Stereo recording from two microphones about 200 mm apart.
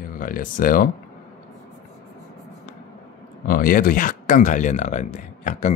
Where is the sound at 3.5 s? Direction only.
45° left (ahead or behind).